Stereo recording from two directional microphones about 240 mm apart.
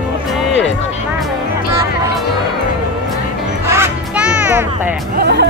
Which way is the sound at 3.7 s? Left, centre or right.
Centre.